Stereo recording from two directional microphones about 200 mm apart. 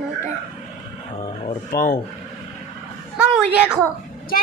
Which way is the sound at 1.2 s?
25° left (ahead or behind).